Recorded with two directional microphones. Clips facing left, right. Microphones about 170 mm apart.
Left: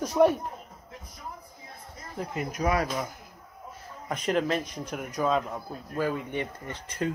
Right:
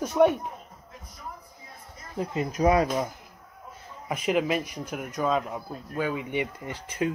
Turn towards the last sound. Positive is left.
turn(degrees=-10)  # may be behind; listen again after turning